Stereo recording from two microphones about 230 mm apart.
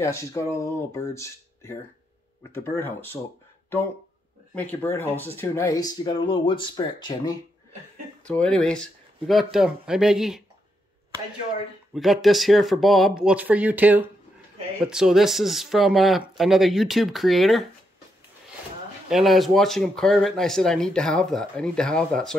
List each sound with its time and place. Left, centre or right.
0.0 s speech: centre
4.6 s speech: centre
8.3 s speech: centre
11.9 s speech: centre
19.0 s speech: centre